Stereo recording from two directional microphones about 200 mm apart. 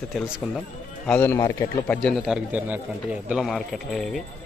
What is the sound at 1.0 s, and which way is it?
A man's voice, 10° left (ahead or behind).